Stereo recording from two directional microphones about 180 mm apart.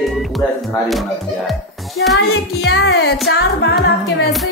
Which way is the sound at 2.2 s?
80° left.